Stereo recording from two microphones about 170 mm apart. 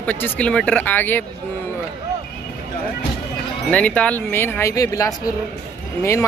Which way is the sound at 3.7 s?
5° left (ahead or behind).